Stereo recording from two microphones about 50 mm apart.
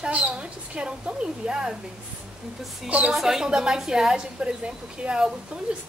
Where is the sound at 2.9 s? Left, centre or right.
Right.